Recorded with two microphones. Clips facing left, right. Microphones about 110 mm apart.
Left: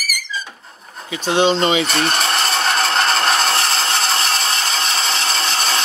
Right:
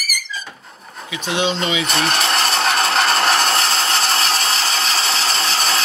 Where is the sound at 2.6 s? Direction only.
5° right (ahead or behind).